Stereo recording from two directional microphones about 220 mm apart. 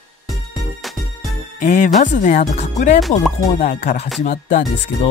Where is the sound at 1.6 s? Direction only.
35° left (ahead or behind).